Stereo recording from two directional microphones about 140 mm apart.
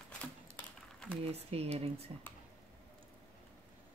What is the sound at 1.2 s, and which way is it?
Speech, 45° right (ahead or behind).